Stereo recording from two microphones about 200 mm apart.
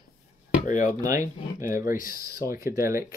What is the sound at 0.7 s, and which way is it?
Speech, 40° left (ahead or behind).